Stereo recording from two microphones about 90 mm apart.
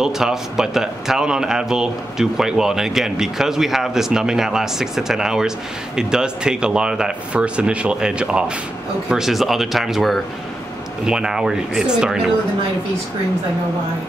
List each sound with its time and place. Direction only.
0.0 s speech: 5° right (ahead or behind)